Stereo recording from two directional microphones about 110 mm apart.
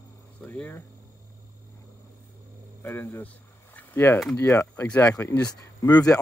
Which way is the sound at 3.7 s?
20° left (ahead or behind).